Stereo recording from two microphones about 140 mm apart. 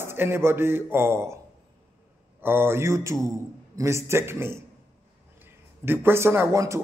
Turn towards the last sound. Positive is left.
turn(degrees=-20)  # may be behind; listen again after turning